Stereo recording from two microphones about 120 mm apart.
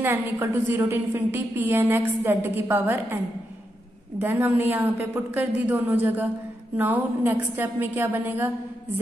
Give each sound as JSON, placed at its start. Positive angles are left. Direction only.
{"t": 0.0, "sound": "a woman's voice", "side_deg": -20}
{"t": 4.2, "sound": "a woman's voice", "side_deg": -20}